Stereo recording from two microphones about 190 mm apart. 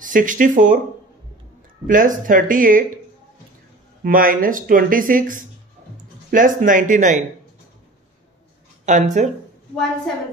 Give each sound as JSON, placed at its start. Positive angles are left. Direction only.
{"t": 0.0, "sound": "speech", "side_deg": -45}
{"t": 1.9, "sound": "speech", "side_deg": -45}
{"t": 4.0, "sound": "speech", "side_deg": -45}
{"t": 8.8, "sound": "speech", "side_deg": -40}